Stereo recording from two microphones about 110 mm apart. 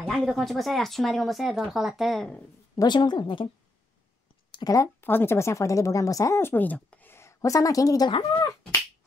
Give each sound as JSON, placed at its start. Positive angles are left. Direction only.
{"t": 0.0, "sound": "speech", "side_deg": 0}
{"t": 2.7, "sound": "a woman's voice", "side_deg": 40}
{"t": 4.6, "sound": "a woman's voice", "side_deg": 35}
{"t": 5.0, "sound": "speech", "side_deg": 20}